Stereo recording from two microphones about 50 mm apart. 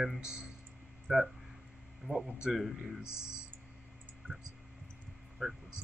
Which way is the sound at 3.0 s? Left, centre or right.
Left.